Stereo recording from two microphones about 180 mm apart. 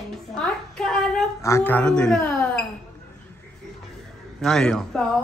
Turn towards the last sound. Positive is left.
turn(degrees=5)  # may be behind; listen again after turning